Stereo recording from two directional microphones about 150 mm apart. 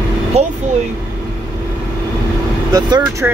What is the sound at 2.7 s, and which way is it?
Speech, 20° right (ahead or behind).